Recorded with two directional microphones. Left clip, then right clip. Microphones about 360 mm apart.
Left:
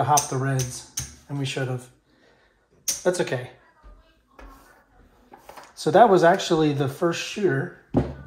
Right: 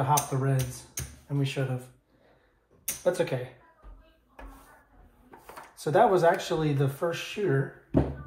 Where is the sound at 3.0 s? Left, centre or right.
Left.